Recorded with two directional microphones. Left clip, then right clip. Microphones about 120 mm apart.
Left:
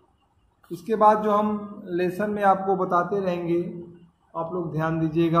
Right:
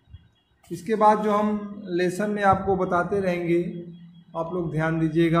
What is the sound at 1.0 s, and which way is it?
Speech, 25° right (ahead or behind).